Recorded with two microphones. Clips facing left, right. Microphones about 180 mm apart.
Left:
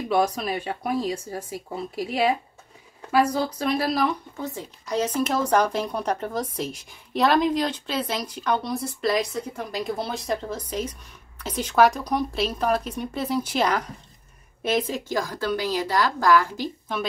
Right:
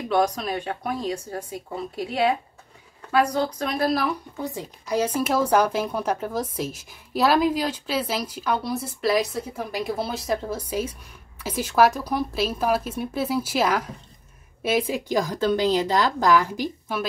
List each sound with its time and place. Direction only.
0.1 s speech: 5° left (ahead or behind)
3.5 s speech: 5° left (ahead or behind)
4.4 s speech: 10° right (ahead or behind)